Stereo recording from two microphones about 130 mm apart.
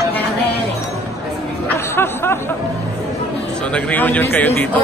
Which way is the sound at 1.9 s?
20° left (ahead or behind).